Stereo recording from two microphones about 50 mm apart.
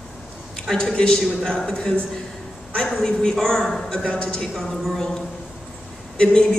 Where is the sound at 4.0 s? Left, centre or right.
Left.